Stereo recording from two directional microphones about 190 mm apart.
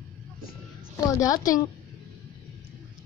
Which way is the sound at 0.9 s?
20° left (ahead or behind).